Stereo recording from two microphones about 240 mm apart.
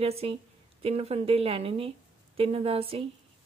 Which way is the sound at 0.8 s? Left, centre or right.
Right.